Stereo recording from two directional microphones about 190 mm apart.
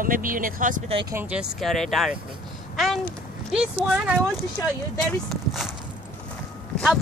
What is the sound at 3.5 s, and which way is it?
Speech, 5° right (ahead or behind).